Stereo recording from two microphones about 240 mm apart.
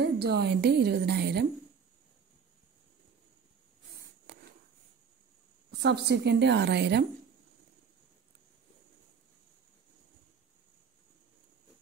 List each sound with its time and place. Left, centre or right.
0.0 s a woman's voice: right
5.8 s a woman's voice: right